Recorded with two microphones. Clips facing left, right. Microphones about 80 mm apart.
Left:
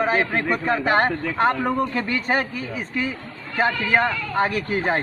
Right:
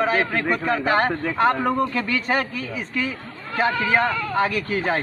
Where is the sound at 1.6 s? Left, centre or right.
Centre.